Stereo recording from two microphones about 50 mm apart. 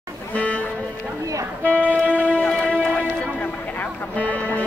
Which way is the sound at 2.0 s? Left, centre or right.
Left.